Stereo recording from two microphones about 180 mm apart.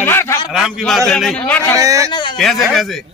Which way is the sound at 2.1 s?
25° left (ahead or behind).